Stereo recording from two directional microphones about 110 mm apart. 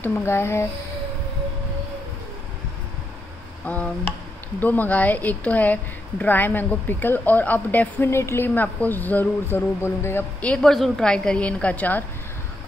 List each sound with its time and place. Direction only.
0.0 s a sound: 20° left (ahead or behind)
3.6 s a woman's voice: 15° left (ahead or behind)
10.4 s a woman's voice: 5° left (ahead or behind)